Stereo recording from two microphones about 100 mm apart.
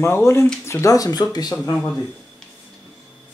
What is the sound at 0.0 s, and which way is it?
Speech, 25° left (ahead or behind).